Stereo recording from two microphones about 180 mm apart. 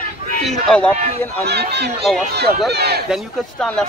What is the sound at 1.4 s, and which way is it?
Battle cry, 65° right (ahead or behind).